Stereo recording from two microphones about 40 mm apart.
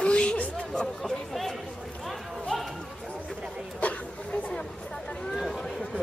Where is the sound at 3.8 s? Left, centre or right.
Left.